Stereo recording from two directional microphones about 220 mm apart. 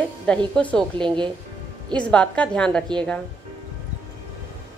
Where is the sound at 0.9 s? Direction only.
20° right (ahead or behind).